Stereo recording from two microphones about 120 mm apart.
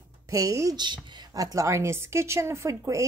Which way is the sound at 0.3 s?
25° right (ahead or behind).